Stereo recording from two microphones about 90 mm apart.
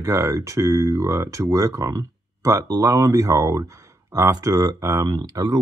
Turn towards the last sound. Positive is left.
turn(degrees=-45)  # may be behind; listen again after turning